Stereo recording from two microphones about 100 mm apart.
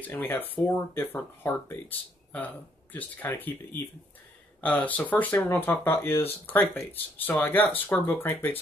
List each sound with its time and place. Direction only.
0.0 s speech: 20° left (ahead or behind)